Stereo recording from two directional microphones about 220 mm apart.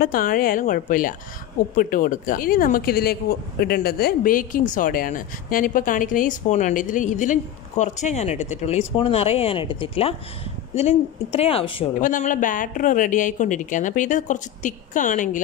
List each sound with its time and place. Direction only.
0.0 s speech: 40° left (ahead or behind)
12.0 s speech: 35° left (ahead or behind)